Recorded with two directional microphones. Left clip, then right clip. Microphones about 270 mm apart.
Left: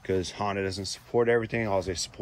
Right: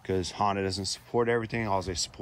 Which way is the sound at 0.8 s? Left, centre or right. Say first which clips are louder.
Right 1 dB; right.